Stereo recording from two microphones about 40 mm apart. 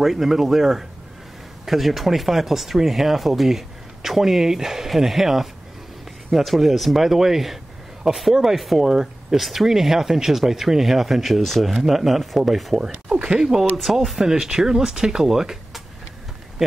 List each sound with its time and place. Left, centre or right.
0.0 s speech: centre
13.1 s speech: right
13.4 s speech: centre
14.2 s speech: centre